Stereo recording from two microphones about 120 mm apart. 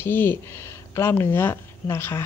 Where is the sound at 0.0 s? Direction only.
15° left (ahead or behind).